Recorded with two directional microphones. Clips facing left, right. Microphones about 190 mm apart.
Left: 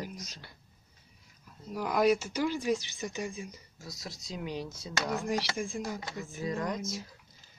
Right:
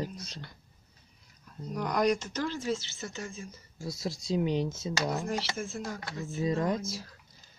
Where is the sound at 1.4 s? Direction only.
5° left (ahead or behind).